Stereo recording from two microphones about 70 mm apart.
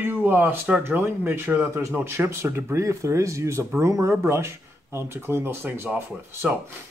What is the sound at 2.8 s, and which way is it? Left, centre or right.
Speech, right.